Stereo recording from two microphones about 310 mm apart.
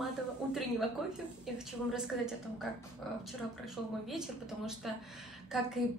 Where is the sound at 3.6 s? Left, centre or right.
Centre.